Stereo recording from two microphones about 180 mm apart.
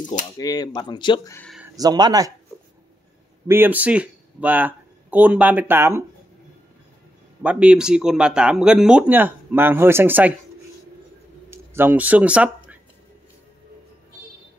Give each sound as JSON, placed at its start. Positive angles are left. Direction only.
{"t": 0.0, "sound": "speech", "side_deg": 20}
{"t": 1.8, "sound": "speech", "side_deg": -20}
{"t": 3.4, "sound": "speech", "side_deg": -10}
{"t": 7.4, "sound": "speech", "side_deg": -5}
{"t": 11.5, "sound": "speech", "side_deg": -10}